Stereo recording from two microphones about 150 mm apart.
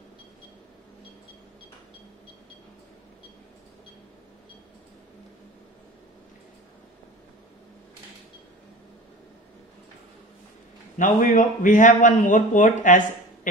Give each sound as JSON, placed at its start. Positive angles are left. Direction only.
{"t": 11.0, "sound": "a man's voice", "side_deg": 60}